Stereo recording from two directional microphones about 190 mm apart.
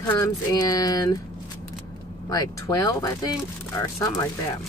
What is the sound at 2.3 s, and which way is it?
Speech, 20° left (ahead or behind).